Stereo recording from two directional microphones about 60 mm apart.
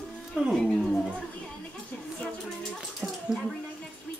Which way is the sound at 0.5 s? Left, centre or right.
Centre.